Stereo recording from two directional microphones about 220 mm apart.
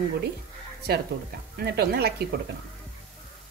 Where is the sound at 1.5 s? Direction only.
45° right (ahead or behind).